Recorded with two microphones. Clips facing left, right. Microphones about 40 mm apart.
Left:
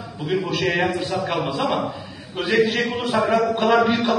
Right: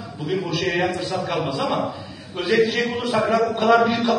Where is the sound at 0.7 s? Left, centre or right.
Centre.